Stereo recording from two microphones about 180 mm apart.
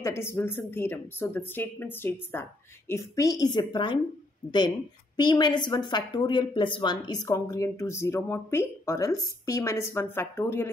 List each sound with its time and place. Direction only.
0.0 s a woman's voice: 15° left (ahead or behind)